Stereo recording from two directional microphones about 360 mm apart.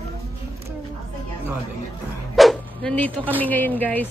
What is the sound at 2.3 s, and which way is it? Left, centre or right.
Speech, centre.